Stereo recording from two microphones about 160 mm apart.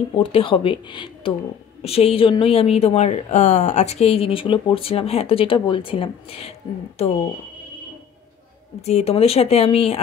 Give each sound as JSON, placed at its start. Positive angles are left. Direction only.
{"t": 0.1, "sound": "a woman's voice", "side_deg": 35}
{"t": 8.8, "sound": "a woman's voice", "side_deg": 40}